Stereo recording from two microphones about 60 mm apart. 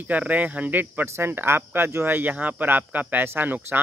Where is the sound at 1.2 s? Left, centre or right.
Right.